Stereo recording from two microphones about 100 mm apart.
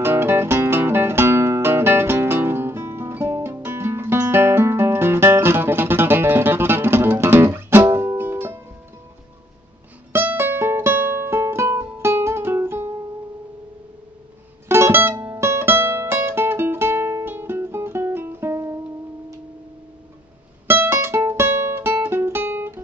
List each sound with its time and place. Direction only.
0.0 s music: 25° right (ahead or behind)
10.1 s music: 25° right (ahead or behind)
14.7 s music: 25° right (ahead or behind)
20.6 s music: 25° right (ahead or behind)